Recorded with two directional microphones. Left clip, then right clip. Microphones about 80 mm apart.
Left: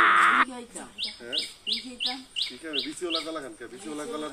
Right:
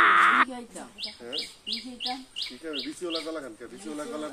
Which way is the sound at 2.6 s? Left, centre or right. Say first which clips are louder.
Left 2 dB; right.